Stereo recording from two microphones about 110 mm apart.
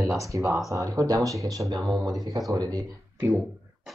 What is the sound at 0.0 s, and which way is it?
Speech, 30° right (ahead or behind).